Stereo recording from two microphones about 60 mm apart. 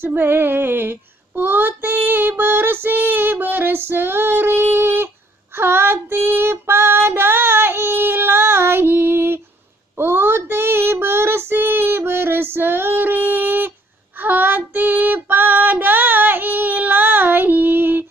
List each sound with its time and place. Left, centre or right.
0.0 s female singing: right
9.9 s child singing: right